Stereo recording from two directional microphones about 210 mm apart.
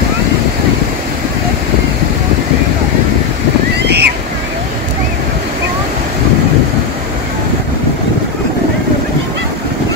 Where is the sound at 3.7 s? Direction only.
50° right (ahead or behind).